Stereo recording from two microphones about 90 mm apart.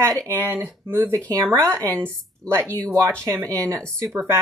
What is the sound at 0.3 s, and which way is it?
Speech, 20° right (ahead or behind).